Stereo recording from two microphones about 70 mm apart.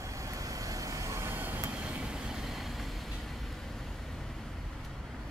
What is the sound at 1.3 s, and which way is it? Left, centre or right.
Vehicle, right.